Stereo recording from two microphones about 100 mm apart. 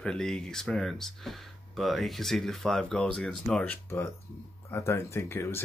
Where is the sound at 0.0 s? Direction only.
5° left (ahead or behind).